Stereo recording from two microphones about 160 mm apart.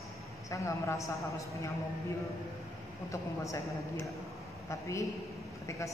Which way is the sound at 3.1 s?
20° left (ahead or behind).